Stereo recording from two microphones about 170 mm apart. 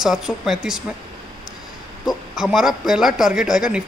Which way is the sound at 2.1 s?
Centre (ahead or behind).